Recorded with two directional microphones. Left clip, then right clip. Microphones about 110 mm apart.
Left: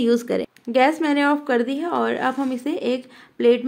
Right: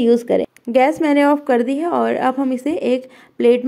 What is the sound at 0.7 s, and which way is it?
A woman's voice, 40° right (ahead or behind).